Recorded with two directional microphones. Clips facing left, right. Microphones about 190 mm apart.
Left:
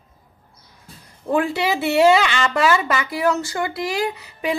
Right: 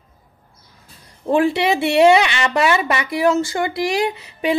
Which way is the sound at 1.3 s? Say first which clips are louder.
Right 4 dB; 25° right (ahead or behind).